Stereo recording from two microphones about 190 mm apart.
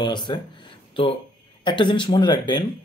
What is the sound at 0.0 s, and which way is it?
Speech, 25° left (ahead or behind).